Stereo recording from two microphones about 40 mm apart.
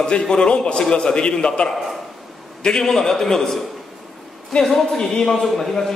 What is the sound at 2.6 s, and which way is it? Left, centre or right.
A man's voice, centre.